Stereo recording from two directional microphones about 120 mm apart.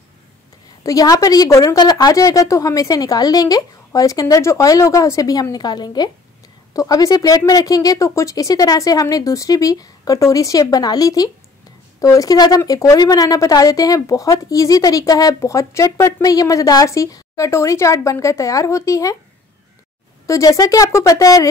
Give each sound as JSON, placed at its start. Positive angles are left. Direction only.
{"t": 0.8, "sound": "a woman's voice", "side_deg": 30}
{"t": 20.2, "sound": "a woman's voice", "side_deg": 30}